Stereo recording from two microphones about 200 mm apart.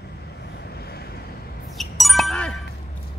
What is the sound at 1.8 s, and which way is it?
Ding, centre (ahead or behind).